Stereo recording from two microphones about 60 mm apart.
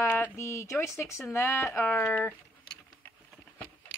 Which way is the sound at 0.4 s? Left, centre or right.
Left.